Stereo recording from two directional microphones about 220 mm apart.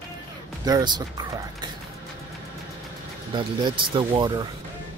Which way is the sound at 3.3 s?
20° right (ahead or behind).